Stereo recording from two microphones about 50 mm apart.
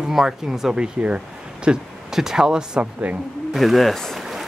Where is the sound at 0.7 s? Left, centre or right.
Right.